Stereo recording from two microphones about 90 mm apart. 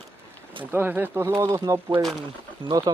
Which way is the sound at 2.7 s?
50° right (ahead or behind).